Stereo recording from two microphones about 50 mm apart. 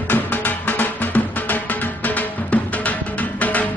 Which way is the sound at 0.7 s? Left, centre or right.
Left.